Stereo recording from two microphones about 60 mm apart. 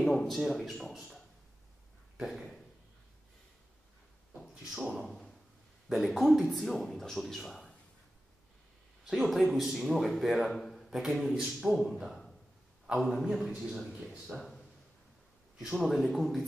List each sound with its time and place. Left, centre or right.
0.0 s a man's voice: centre
2.2 s a man's voice: centre
5.0 s speech: centre
5.9 s a man's voice: centre
9.0 s a man's voice: centre
10.5 s a sound: centre
10.9 s a man's voice: centre
13.0 s a man's voice: centre
14.3 s speech: centre
15.6 s a man's voice: centre